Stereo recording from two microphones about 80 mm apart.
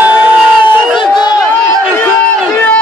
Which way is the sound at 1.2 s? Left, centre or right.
Left.